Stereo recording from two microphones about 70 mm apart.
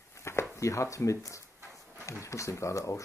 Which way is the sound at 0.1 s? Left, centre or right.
Left.